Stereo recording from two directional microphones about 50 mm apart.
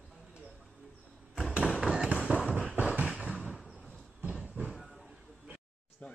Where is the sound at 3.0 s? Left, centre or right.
Centre.